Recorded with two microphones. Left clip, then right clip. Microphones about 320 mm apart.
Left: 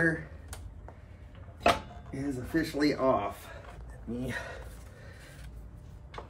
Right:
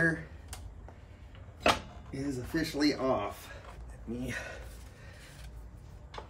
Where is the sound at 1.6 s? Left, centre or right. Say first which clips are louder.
Left 2 dB; centre.